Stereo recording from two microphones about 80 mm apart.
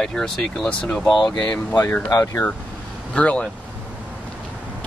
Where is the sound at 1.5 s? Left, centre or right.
Left.